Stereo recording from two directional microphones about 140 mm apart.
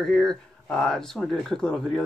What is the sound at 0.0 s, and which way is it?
Speech, 5° left (ahead or behind).